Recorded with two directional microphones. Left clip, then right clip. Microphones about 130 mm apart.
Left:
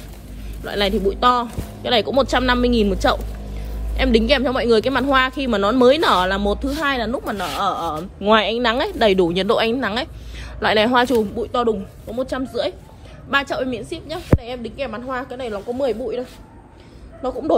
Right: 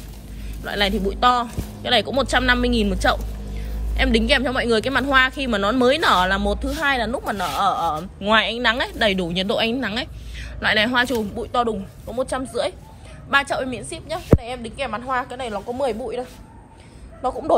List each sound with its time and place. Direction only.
0.7 s speech: 30° left (ahead or behind)
6.8 s speech: 20° left (ahead or behind); by 9.3 s 40° left (ahead or behind)
9.3 s speech: 75° left (ahead or behind)
10.6 s a woman's voice: 45° left (ahead or behind)
11.3 s speech: 30° left (ahead or behind)
12.1 s a woman's voice: 10° left (ahead or behind)
13.3 s a woman's voice: 20° left (ahead or behind); by 17.6 s 5° left (ahead or behind)